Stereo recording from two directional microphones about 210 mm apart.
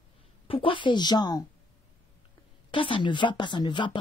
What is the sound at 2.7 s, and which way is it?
A woman's voice, 25° left (ahead or behind).